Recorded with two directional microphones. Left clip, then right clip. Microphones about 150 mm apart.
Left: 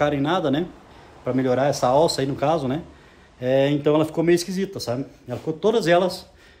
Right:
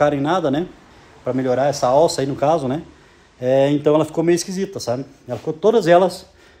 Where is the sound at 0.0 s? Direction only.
5° left (ahead or behind).